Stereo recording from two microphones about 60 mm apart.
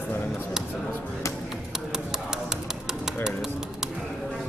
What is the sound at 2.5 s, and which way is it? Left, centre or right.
Music, centre.